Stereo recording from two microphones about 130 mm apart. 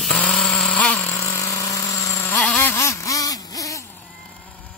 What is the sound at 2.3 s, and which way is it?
Vehicle, 10° left (ahead or behind).